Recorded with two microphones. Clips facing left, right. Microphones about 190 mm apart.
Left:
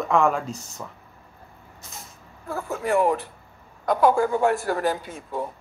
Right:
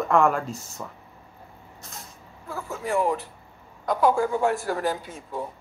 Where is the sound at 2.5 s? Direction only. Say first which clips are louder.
Left 4 dB; 60° left (ahead or behind).